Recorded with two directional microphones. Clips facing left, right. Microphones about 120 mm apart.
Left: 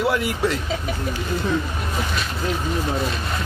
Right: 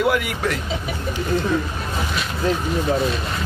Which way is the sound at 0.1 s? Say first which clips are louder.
Even; 30° left (ahead or behind).